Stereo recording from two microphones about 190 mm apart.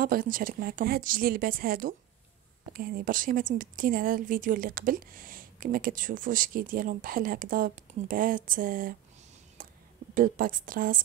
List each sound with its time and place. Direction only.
0.0 s speech: 50° right (ahead or behind)
9.6 s a sound: 45° right (ahead or behind)
10.1 s speech: 45° right (ahead or behind)